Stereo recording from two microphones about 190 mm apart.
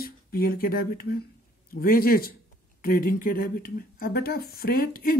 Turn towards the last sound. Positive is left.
turn(degrees=50)  # may be behind; listen again after turning